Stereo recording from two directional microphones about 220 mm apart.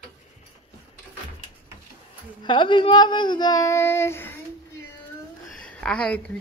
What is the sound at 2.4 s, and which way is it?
Speech, 20° left (ahead or behind).